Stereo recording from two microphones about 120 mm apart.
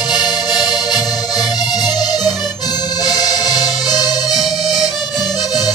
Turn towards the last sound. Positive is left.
turn(degrees=0)  # may be behind; listen again after turning